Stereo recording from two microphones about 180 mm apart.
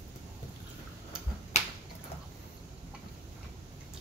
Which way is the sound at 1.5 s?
40° left (ahead or behind).